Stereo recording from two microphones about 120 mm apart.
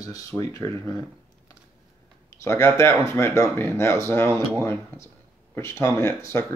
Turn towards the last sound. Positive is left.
turn(degrees=20)  # may be behind; listen again after turning